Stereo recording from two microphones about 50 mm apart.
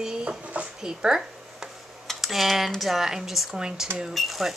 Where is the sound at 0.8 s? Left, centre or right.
Centre.